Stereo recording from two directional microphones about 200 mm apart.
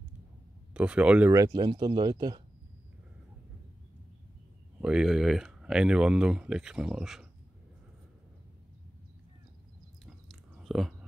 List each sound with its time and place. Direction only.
0.7 s speech: 5° right (ahead or behind)
4.8 s speech: centre (ahead or behind)
10.6 s chewing: centre (ahead or behind)